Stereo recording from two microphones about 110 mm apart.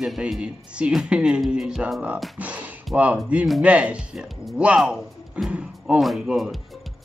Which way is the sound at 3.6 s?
10° right (ahead or behind).